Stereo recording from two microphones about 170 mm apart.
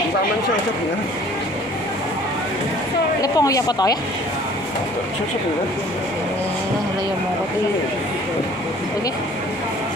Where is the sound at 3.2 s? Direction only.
20° left (ahead or behind).